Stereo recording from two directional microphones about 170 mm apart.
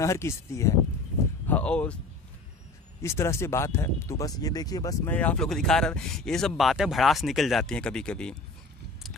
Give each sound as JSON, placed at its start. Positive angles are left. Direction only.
{"t": 0.0, "sound": "speech", "side_deg": 15}
{"t": 3.0, "sound": "speech", "side_deg": 15}
{"t": 5.1, "sound": "speech", "side_deg": 10}